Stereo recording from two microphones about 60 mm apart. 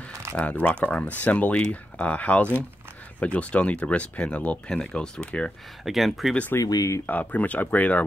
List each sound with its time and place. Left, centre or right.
0.4 s speech: left
5.9 s speech: centre
6.6 s speech: left
7.1 s speech: left